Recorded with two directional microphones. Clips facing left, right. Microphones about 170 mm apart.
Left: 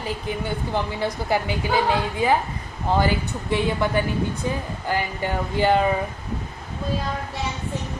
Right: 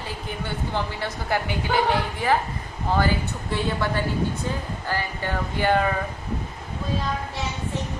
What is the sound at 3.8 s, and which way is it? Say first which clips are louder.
A woman's voice: left 2 dB; 15° left (ahead or behind).